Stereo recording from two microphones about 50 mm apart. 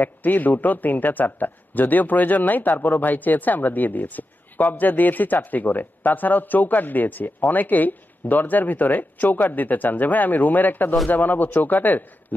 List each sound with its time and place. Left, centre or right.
0.0 s speech: left